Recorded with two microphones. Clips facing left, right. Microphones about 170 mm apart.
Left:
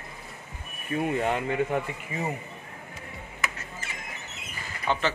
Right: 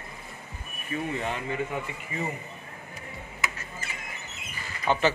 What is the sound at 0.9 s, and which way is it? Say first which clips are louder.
Speech: left 5 dB; 50° left (ahead or behind).